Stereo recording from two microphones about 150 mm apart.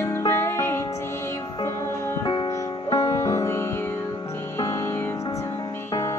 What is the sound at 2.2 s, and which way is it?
Music, 35° left (ahead or behind).